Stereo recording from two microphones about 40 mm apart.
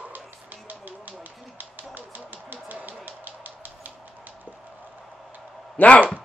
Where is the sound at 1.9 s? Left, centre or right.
Right.